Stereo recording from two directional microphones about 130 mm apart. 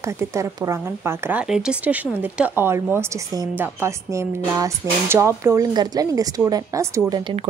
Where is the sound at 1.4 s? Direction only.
5° right (ahead or behind); by 7.0 s 25° right (ahead or behind).